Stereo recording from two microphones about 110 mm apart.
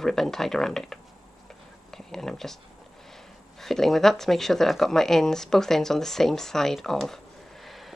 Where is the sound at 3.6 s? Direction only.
5° left (ahead or behind).